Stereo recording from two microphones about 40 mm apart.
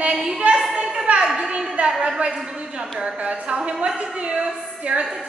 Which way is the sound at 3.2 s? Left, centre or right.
Right.